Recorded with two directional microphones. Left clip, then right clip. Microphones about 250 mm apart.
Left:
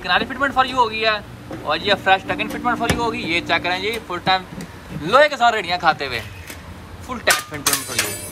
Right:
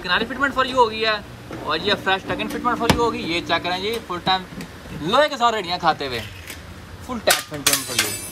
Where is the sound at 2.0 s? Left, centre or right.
Centre.